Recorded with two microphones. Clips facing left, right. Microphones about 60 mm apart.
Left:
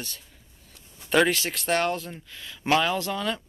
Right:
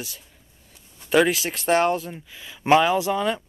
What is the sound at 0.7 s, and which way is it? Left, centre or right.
Speech, centre.